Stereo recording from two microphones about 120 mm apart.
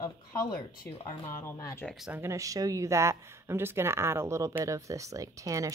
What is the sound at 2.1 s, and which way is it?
Speech, 20° right (ahead or behind).